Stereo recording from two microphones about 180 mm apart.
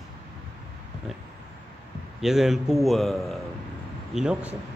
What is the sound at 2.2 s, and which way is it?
Speech, centre (ahead or behind).